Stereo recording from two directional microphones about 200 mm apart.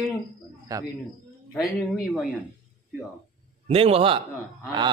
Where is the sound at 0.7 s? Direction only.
20° right (ahead or behind).